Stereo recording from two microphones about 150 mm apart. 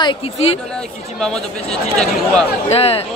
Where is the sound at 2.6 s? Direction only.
40° left (ahead or behind).